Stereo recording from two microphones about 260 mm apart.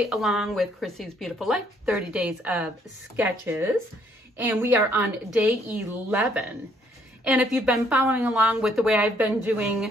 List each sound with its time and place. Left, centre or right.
0.0 s a woman's voice: centre